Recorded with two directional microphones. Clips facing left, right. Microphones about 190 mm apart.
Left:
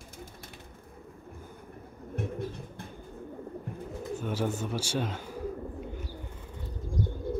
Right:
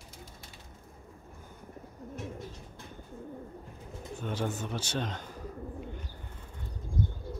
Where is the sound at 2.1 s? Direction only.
60° left (ahead or behind).